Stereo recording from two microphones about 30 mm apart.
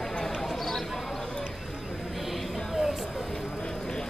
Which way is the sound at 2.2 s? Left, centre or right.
Centre.